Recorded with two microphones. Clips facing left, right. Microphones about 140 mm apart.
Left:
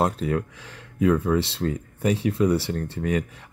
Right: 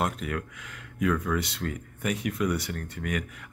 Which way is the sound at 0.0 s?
30° left (ahead or behind).